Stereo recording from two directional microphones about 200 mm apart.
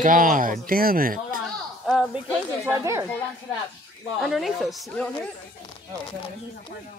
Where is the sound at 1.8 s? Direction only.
Centre (ahead or behind).